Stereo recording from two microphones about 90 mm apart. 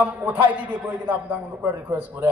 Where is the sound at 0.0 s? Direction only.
20° right (ahead or behind).